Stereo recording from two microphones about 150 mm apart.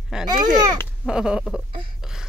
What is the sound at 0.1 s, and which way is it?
Speech, 5° right (ahead or behind).